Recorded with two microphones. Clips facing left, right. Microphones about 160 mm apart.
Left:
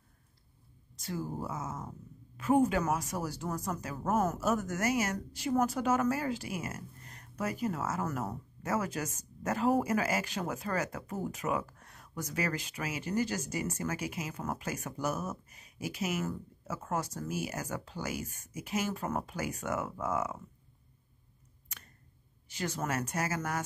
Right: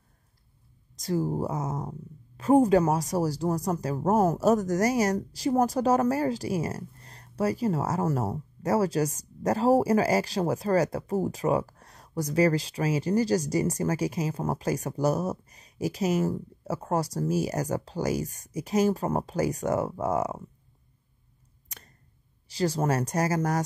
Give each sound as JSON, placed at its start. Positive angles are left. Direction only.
{"t": 0.9, "sound": "speech", "side_deg": -40}
{"t": 21.6, "sound": "a sound", "side_deg": -35}
{"t": 22.5, "sound": "speech", "side_deg": -35}